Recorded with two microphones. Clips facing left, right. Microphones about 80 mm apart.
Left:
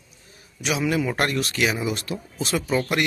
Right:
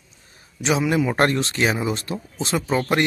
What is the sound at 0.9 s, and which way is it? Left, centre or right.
Speech, centre.